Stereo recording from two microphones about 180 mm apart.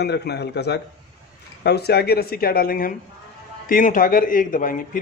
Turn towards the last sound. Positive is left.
turn(degrees=50)  # may be behind; listen again after turning